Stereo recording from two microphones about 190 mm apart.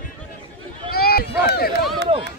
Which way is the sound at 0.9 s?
55° left (ahead or behind).